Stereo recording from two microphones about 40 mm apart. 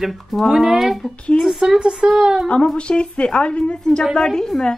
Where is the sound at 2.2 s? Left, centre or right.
Centre.